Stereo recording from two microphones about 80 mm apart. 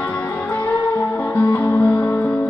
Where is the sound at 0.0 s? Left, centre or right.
Centre.